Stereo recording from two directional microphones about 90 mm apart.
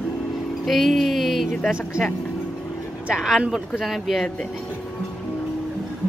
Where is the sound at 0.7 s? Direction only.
Centre (ahead or behind).